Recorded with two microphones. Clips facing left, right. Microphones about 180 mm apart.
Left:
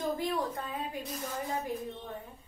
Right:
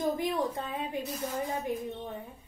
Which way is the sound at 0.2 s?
20° right (ahead or behind).